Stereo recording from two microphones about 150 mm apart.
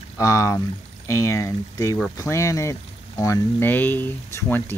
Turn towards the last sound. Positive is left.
turn(degrees=10)  # may be behind; listen again after turning